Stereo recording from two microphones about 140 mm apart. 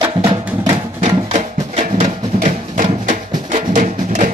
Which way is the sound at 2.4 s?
65° right (ahead or behind).